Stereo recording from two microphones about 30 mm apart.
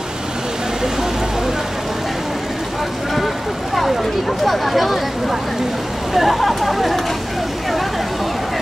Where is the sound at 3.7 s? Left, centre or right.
Centre.